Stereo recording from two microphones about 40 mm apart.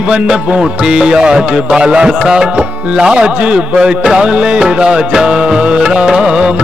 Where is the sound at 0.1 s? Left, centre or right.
Right.